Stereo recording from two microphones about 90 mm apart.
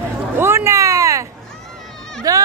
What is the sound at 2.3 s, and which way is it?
Speech, 40° right (ahead or behind).